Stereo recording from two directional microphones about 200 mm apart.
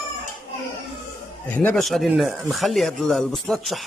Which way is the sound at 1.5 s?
10° left (ahead or behind).